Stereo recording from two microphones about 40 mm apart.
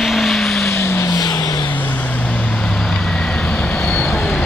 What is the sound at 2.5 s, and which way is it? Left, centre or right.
Vehicle, centre.